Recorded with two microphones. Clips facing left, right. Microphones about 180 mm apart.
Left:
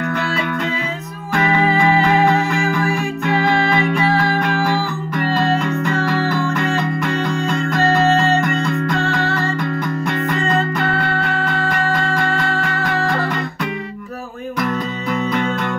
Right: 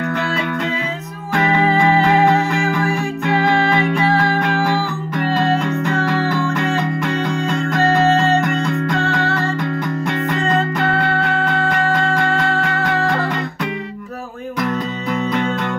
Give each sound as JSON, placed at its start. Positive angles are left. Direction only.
{"t": 0.1, "sound": "music", "side_deg": -25}
{"t": 14.6, "sound": "music", "side_deg": -25}